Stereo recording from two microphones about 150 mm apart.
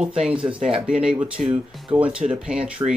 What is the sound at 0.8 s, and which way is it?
Speech, 5° right (ahead or behind).